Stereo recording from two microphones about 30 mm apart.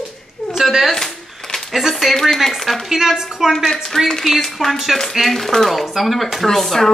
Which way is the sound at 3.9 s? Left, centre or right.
Centre.